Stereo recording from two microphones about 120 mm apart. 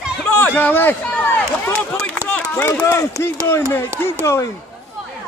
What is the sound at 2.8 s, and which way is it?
Speech, 20° left (ahead or behind).